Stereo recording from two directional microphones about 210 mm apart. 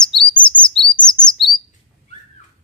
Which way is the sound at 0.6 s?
20° left (ahead or behind).